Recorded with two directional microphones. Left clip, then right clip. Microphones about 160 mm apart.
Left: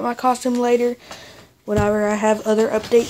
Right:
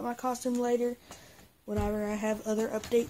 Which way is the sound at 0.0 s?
25° left (ahead or behind).